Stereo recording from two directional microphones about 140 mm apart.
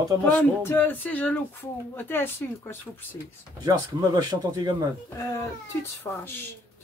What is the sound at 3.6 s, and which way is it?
Speech, 30° right (ahead or behind).